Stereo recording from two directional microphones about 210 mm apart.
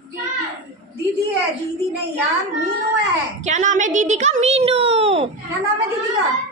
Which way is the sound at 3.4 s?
35° right (ahead or behind).